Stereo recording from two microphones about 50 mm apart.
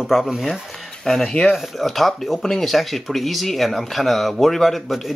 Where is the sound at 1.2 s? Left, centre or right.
Left.